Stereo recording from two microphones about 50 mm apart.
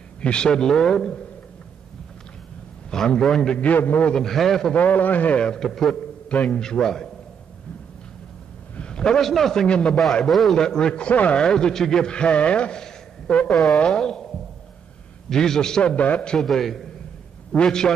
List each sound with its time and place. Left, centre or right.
0.2 s a man's voice: centre
2.9 s a man's voice: centre
3.5 s a man's voice: left
4.1 s a man's voice: centre
4.7 s a man's voice: left
5.4 s a man's voice: centre
8.7 s a sound: centre
9.2 s a man's voice: centre; by 11.4 s left
11.4 s a man's voice: centre
13.5 s a man's voice: centre
13.7 s a man's voice: centre
15.8 s a man's voice: left
16.4 s a man's voice: centre